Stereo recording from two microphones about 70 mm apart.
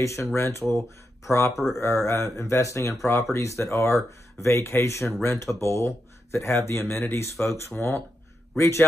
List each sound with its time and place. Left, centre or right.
0.0 s speech: left